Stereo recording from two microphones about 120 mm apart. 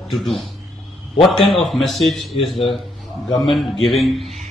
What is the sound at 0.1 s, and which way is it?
Speech, centre (ahead or behind).